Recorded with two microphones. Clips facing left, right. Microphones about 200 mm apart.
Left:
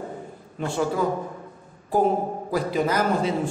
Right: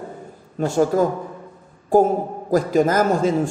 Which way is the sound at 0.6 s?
40° right (ahead or behind).